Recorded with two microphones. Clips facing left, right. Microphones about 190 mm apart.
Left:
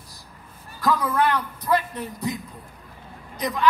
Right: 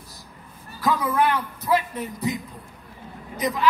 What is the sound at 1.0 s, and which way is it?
A man's voice, 10° right (ahead or behind).